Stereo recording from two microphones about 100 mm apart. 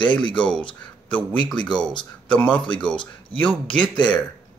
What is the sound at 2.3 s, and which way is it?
Speech, 10° left (ahead or behind).